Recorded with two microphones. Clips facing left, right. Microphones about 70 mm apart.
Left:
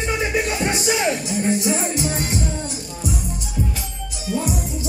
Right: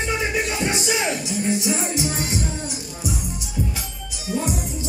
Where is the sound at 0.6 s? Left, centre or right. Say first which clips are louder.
Left 2 dB; left.